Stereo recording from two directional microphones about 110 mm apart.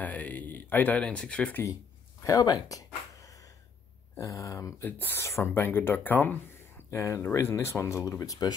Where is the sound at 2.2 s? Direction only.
35° left (ahead or behind).